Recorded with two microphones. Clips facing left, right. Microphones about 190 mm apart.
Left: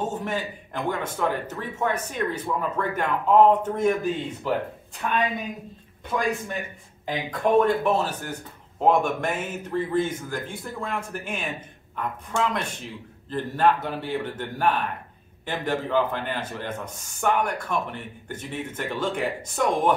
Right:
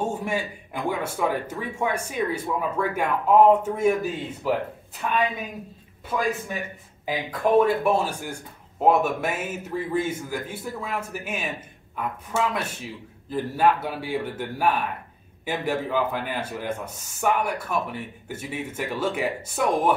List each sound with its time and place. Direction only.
0.0 s a man's voice: 10° right (ahead or behind)